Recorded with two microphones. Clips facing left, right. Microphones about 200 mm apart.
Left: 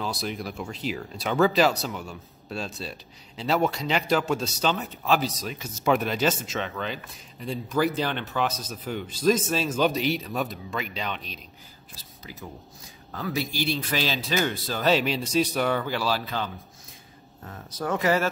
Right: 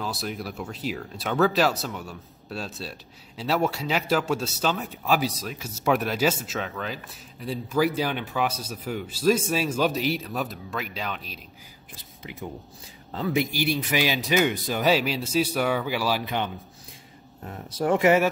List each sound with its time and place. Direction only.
0.0 s speech: centre (ahead or behind)
12.2 s speech: 25° right (ahead or behind)